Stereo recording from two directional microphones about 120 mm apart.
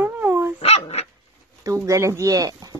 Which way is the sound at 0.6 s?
60° left (ahead or behind).